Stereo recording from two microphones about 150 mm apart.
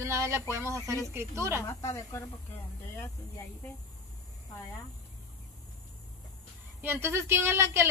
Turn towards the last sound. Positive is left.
turn(degrees=-15)  # may be behind; listen again after turning